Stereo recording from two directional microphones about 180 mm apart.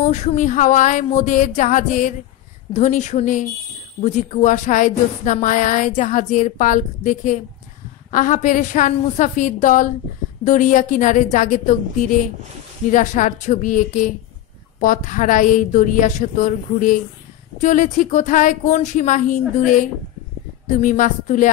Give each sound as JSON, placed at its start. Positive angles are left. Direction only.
{"t": 0.0, "sound": "speech", "side_deg": 40}